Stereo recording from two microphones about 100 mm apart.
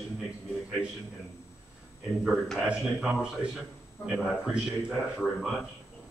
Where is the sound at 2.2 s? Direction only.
5° right (ahead or behind).